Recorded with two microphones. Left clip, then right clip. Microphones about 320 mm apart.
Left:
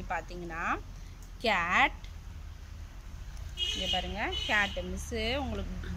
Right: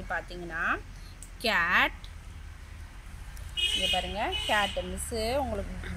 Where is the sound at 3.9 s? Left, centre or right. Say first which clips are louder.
Right 3 dB; centre.